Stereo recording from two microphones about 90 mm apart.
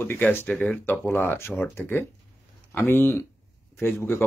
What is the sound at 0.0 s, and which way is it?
Speech, 25° left (ahead or behind).